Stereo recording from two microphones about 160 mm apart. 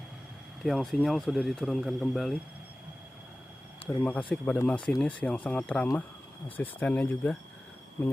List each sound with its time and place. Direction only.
0.7 s speech: centre (ahead or behind)
3.8 s a sound: 35° left (ahead or behind)
4.3 s speech: 10° left (ahead or behind)